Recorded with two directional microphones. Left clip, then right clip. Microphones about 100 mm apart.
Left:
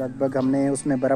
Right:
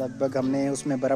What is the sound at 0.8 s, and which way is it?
Speech, 5° right (ahead or behind).